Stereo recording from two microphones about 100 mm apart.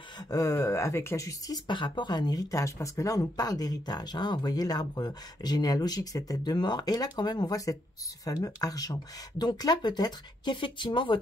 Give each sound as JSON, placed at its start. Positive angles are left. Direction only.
{"t": 0.3, "sound": "speech", "side_deg": 35}
{"t": 1.7, "sound": "speech", "side_deg": 50}